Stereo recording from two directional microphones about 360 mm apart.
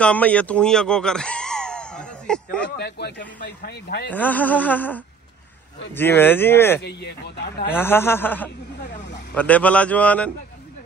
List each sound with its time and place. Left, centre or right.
0.0 s speech: centre
2.8 s speech: left
4.1 s a man's voice: centre
6.8 s speech: left
7.7 s a man's voice: centre